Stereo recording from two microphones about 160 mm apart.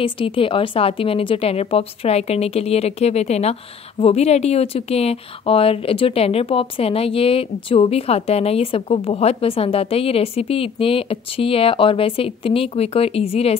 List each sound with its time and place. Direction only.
0.0 s a woman's voice: 35° left (ahead or behind)